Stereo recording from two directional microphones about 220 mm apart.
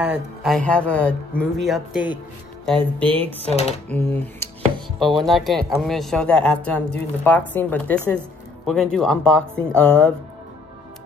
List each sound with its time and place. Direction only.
0.0 s speech: 5° right (ahead or behind)
3.5 s speech: 30° left (ahead or behind)
3.9 s speech: 10° left (ahead or behind)